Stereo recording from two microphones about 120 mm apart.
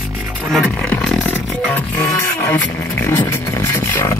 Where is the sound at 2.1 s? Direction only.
25° left (ahead or behind).